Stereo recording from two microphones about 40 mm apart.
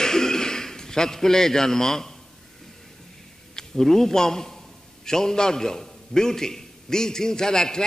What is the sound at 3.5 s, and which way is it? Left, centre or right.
A man's voice, centre.